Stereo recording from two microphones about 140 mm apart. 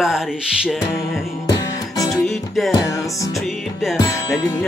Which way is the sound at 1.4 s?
30° left (ahead or behind).